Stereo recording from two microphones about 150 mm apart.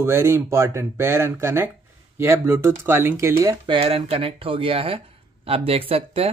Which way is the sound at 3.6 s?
40° right (ahead or behind).